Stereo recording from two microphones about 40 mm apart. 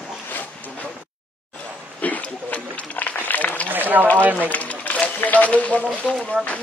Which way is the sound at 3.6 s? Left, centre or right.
Right.